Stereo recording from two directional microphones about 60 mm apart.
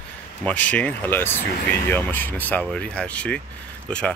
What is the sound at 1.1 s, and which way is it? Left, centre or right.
Speech, left.